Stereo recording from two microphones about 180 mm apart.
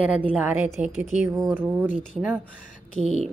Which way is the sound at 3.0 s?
40° right (ahead or behind).